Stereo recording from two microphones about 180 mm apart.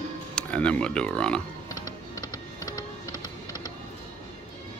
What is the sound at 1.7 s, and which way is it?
Music, 20° left (ahead or behind).